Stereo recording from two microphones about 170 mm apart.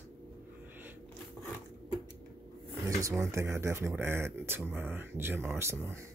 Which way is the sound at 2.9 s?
20° right (ahead or behind).